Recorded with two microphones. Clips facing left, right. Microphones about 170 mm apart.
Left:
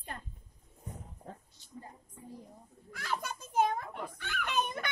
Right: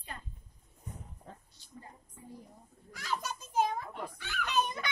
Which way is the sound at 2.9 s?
55° left (ahead or behind).